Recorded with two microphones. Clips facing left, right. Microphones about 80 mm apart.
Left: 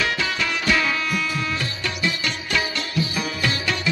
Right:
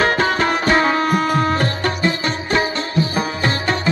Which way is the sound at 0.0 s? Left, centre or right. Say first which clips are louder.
Right 8 dB; right.